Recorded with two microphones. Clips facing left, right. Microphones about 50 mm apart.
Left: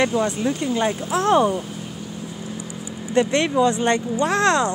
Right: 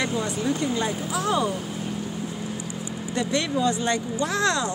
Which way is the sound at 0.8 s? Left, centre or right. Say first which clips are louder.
Left 6 dB; left.